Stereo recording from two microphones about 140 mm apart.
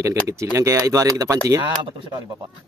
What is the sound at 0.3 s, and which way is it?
Speech, 20° right (ahead or behind).